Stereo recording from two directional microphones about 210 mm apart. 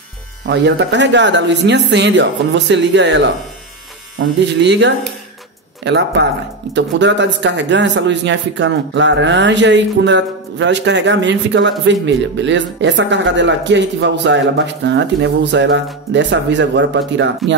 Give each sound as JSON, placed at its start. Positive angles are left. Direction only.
{"t": 0.5, "sound": "speech", "side_deg": -55}